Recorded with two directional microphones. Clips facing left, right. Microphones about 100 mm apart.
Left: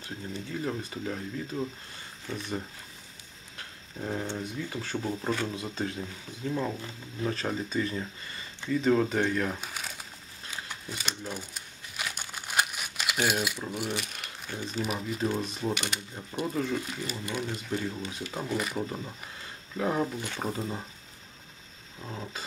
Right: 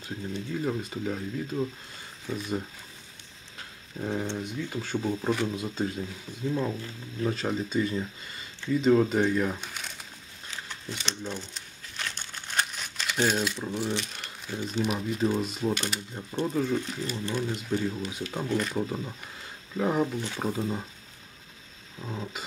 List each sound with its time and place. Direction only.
0.0 s speech: 5° right (ahead or behind)
9.6 s crumpling: 5° left (ahead or behind)
14.6 s speech: centre (ahead or behind)
18.9 s speech: centre (ahead or behind)
22.0 s speech: centre (ahead or behind)